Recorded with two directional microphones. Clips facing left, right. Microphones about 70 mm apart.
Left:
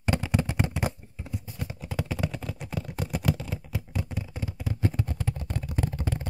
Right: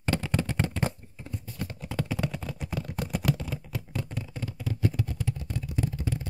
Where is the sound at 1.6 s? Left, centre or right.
Centre.